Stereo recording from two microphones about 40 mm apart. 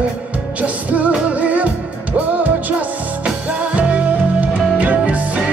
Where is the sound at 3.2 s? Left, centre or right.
Right.